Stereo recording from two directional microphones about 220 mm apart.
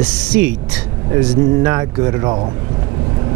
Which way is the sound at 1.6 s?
15° right (ahead or behind).